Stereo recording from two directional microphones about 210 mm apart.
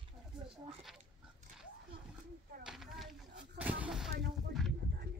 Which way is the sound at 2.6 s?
Centre (ahead or behind).